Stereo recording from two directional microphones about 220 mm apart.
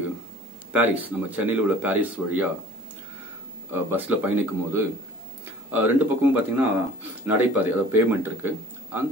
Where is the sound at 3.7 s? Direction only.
10° right (ahead or behind).